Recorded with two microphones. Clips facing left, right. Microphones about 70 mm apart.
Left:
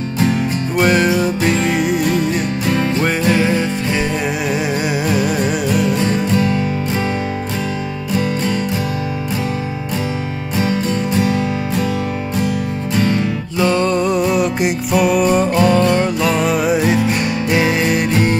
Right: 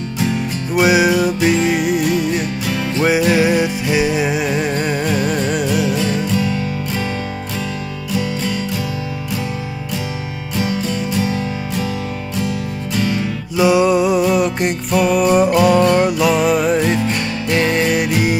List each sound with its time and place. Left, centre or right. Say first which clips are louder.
0.3 s music: left 2 dB; centre
2.6 s music: left 4 dB; left
3.0 s music: right 6 dB; centre
10.7 s music: left 3 dB; left
12.9 s music: left 3 dB; left
13.6 s music: right 3 dB; centre